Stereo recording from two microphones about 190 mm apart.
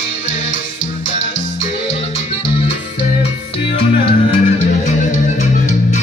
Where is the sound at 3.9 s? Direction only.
35° left (ahead or behind).